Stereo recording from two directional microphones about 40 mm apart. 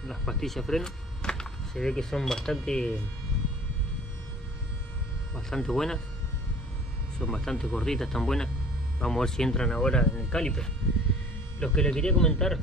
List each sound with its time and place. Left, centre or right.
0.0 s speech: centre
5.5 s speech: centre
7.2 s speech: centre